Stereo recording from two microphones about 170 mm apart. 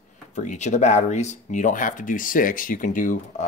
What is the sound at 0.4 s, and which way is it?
Speech, 45° left (ahead or behind).